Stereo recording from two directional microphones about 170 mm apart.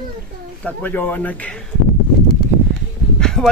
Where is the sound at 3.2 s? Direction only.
5° left (ahead or behind).